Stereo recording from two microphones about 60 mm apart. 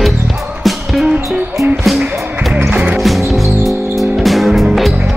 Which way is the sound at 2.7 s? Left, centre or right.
Right.